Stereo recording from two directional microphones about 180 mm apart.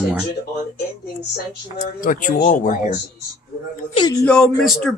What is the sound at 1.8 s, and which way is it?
Speech, 45° left (ahead or behind).